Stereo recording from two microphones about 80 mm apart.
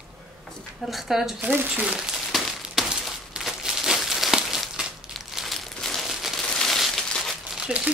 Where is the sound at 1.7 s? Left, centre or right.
Centre.